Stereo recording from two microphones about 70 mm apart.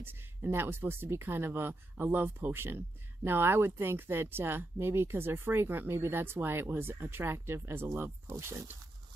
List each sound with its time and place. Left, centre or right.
0.0 s speech: right